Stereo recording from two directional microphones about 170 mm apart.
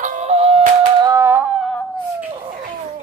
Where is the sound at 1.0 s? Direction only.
15° right (ahead or behind).